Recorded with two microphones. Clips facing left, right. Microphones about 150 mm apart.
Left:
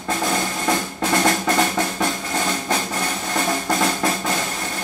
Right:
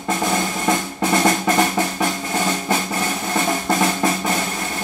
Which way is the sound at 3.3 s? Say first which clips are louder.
Right 2 dB; 20° right (ahead or behind).